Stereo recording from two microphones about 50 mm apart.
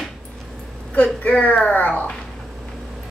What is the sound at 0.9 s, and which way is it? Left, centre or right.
A woman's voice, left.